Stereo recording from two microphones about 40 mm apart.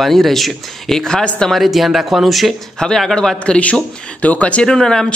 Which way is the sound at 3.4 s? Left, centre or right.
Left.